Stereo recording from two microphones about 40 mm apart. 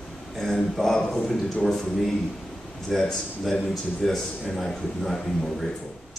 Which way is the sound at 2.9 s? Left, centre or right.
Centre.